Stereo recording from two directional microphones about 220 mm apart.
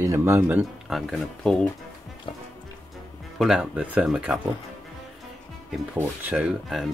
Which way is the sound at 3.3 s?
Centre (ahead or behind).